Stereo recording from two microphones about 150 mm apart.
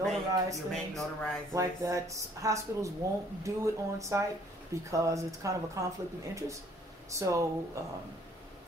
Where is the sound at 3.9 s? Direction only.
20° right (ahead or behind).